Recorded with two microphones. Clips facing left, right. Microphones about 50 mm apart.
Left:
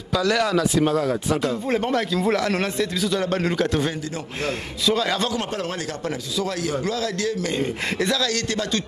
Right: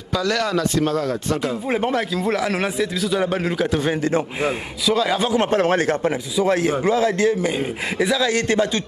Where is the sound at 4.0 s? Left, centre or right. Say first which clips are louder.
Right 10 dB; right.